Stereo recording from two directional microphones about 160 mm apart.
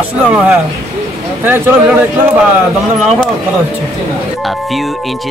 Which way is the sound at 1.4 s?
10° right (ahead or behind).